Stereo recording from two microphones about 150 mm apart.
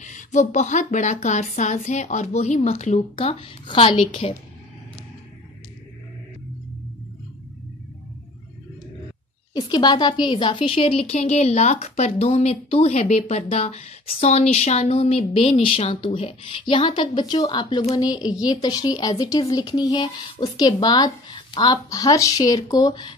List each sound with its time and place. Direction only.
0.0 s speech: 55° left (ahead or behind); by 4.4 s 40° left (ahead or behind)
9.5 s a woman's voice: 30° left (ahead or behind)